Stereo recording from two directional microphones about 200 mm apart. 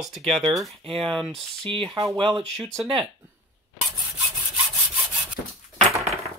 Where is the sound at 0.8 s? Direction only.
25° right (ahead or behind).